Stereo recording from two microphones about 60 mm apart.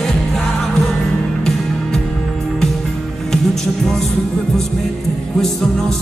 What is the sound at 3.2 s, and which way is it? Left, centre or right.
Music, centre.